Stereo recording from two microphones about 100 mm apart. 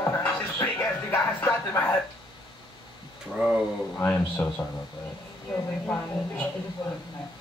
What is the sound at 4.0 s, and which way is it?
Speech, 20° left (ahead or behind).